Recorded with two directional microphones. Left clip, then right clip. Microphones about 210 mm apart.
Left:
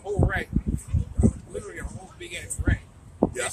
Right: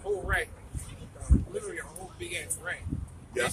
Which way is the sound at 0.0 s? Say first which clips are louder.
Left 2 dB; centre (ahead or behind).